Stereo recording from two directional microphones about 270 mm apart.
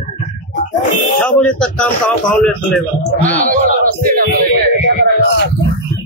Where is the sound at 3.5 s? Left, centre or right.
Right.